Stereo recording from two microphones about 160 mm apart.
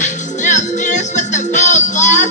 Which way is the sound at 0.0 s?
50° left (ahead or behind).